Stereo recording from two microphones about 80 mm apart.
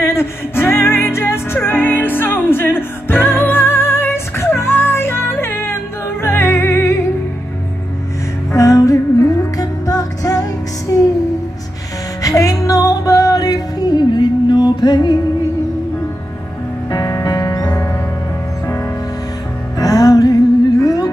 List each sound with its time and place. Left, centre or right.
0.0 s music: left
8.5 s music: left
12.2 s music: left
16.9 s music: left
19.8 s music: left
20.8 s a sound: left